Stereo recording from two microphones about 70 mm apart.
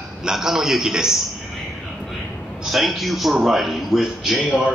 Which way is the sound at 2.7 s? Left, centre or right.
Centre.